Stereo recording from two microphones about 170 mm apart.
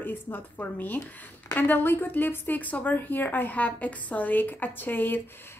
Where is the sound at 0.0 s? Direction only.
10° left (ahead or behind).